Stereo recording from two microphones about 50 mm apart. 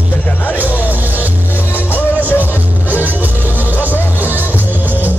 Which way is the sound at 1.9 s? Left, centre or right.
Left.